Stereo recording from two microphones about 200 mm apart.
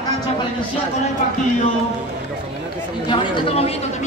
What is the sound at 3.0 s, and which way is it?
Speech, 25° left (ahead or behind).